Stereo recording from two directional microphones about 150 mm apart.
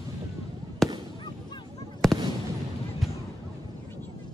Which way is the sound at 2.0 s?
Centre (ahead or behind).